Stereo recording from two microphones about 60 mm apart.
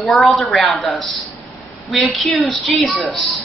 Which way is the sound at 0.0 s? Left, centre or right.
Centre.